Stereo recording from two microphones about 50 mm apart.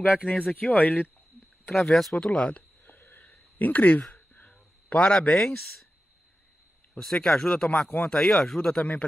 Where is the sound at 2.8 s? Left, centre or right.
Left.